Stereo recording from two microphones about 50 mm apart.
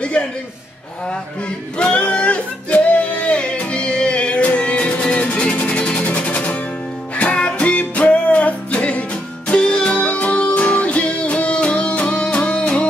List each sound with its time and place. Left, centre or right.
0.2 s a man's voice: left
1.8 s a sound: left
6.0 s music: left